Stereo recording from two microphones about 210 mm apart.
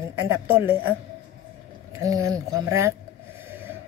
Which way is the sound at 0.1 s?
10° right (ahead or behind).